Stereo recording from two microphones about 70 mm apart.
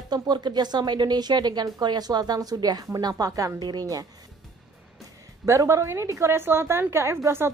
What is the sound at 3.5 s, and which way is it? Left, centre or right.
Speech, right.